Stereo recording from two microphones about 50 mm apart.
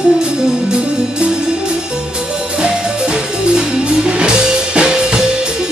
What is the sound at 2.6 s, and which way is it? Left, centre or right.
Music, centre.